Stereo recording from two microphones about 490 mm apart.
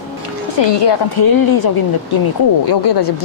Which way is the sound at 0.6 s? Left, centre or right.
Left.